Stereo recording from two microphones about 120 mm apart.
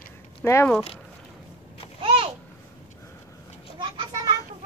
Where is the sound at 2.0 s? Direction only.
50° right (ahead or behind).